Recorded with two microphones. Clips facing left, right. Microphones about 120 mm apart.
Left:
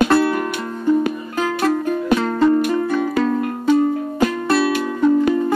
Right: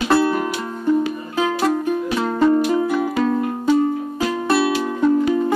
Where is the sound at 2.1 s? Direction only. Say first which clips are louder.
Left 1 dB; 5° right (ahead or behind).